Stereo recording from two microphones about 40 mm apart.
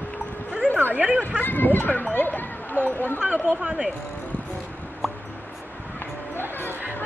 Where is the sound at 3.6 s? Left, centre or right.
Right.